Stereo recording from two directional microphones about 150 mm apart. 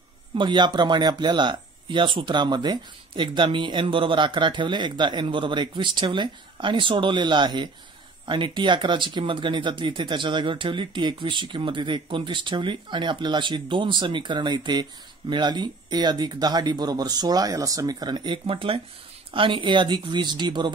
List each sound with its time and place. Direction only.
0.4 s speech: 30° right (ahead or behind)